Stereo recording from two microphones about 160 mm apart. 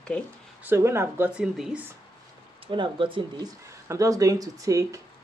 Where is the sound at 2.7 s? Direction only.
30° right (ahead or behind).